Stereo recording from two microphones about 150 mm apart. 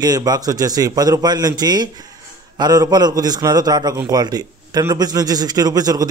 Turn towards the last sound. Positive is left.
turn(degrees=-25)  # may be behind; listen again after turning